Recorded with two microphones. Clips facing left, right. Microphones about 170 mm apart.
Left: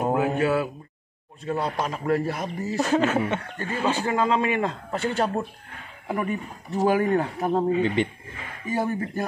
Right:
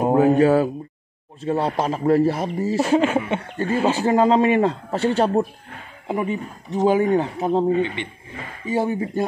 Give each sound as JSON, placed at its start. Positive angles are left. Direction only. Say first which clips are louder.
{"t": 0.1, "sound": "a sound", "louder": "right 10 dB", "side_deg": -35}
{"t": 1.4, "sound": "speech", "louder": "right 5 dB", "side_deg": -30}
{"t": 2.8, "sound": "speech", "louder": "right 2 dB", "side_deg": -10}
{"t": 3.3, "sound": "speech", "louder": "right 8 dB", "side_deg": -30}
{"t": 6.0, "sound": "speech", "louder": "right 3 dB", "side_deg": -20}
{"t": 7.8, "sound": "speech", "louder": "left 2 dB", "side_deg": 40}
{"t": 8.6, "sound": "speech", "louder": "right 4 dB", "side_deg": -25}